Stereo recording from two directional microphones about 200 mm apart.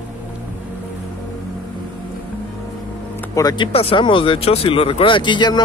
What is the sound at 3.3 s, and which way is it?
Speech, 20° left (ahead or behind).